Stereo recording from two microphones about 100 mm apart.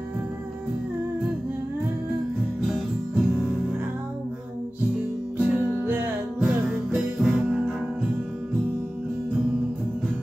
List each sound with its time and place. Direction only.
2.6 s music: centre (ahead or behind)
5.4 s music: 5° right (ahead or behind)
5.9 s music: 20° right (ahead or behind)
6.4 s music: centre (ahead or behind)